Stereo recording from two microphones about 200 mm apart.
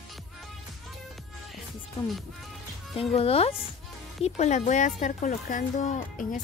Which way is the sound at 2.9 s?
30° left (ahead or behind).